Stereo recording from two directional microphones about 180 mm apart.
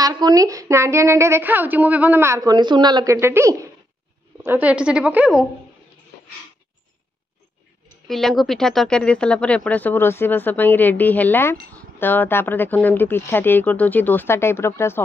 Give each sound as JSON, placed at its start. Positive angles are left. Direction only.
{"t": 0.0, "sound": "speech", "side_deg": -20}
{"t": 8.1, "sound": "speech", "side_deg": 0}